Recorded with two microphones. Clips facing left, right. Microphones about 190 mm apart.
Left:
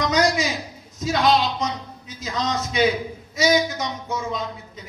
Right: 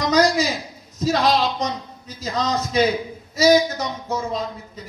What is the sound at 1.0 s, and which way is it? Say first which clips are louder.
Speech: right 1 dB; 35° right (ahead or behind).